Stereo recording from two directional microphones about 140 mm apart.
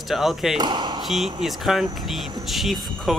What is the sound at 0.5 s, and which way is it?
Speech, 30° right (ahead or behind).